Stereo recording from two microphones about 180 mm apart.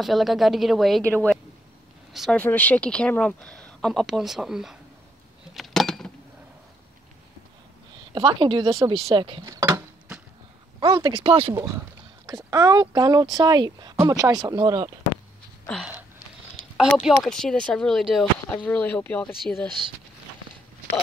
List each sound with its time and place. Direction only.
0.0 s speech: centre (ahead or behind)
2.4 s speech: 10° left (ahead or behind)
5.6 s a sound: centre (ahead or behind)
8.1 s speech: 25° right (ahead or behind)
10.8 s speech: 25° right (ahead or behind)
11.5 s speech: 15° right (ahead or behind)
16.7 s speech: centre (ahead or behind)